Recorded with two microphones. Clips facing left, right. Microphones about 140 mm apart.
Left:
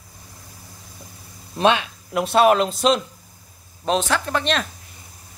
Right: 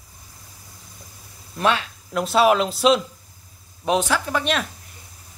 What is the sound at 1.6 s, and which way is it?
Speech, 20° left (ahead or behind).